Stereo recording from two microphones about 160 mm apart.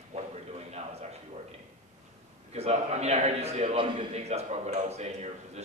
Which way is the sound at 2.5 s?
45° right (ahead or behind).